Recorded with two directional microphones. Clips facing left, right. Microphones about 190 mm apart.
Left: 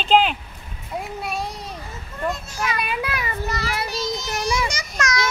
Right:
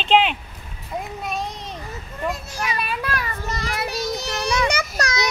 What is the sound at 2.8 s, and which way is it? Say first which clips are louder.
Child singing: even; 10° left (ahead or behind).